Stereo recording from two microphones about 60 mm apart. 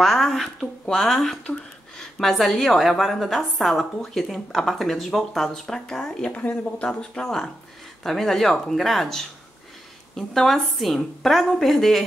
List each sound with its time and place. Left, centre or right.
0.0 s a woman's voice: centre
1.4 s speech: centre
2.1 s a woman's voice: centre
6.3 s a woman's voice: left; by 12.0 s centre